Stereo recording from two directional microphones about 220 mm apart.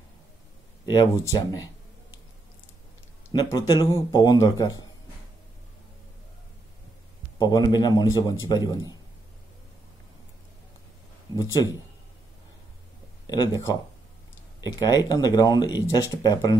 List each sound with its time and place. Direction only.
0.8 s speech: 20° left (ahead or behind)
3.3 s speech: 15° left (ahead or behind)
7.3 s speech: 20° left (ahead or behind)
13.3 s speech: 15° left (ahead or behind)